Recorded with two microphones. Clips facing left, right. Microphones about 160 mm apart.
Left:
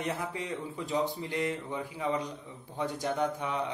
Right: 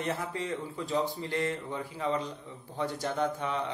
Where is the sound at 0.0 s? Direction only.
15° left (ahead or behind).